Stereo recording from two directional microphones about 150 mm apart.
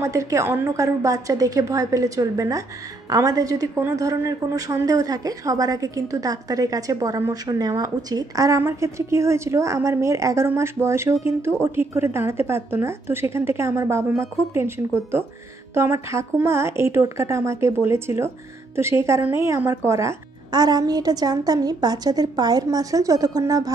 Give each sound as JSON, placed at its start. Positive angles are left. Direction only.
{"t": 0.0, "sound": "a woman's voice", "side_deg": -20}